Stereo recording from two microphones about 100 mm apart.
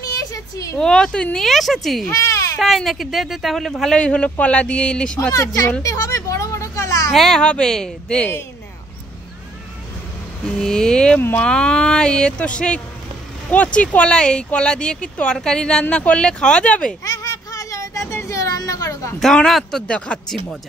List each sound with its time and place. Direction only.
0.0 s a sound: 35° left (ahead or behind)
0.7 s speech: 5° left (ahead or behind)
2.0 s baby cry: 30° left (ahead or behind)
2.6 s speech: centre (ahead or behind)
5.3 s speech: 35° left (ahead or behind)
5.8 s a sound: 35° left (ahead or behind)
7.1 s speech: 5° left (ahead or behind)
10.6 s speech: 5° left (ahead or behind)
11.1 s speech: 20° left (ahead or behind)
11.4 s speech: 10° left (ahead or behind)
17.0 s a sound: 35° left (ahead or behind)
19.1 s speech: 5° left (ahead or behind)